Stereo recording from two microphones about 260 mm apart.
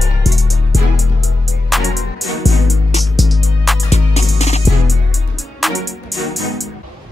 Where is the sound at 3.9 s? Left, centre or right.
Left.